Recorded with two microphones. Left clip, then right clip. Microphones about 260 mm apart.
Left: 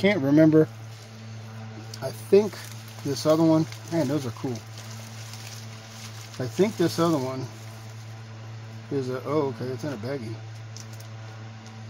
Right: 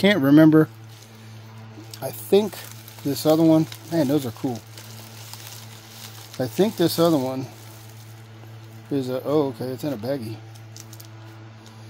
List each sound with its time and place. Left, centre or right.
0.0 s speech: right
2.0 s speech: right
6.3 s speech: right
9.1 s speech: right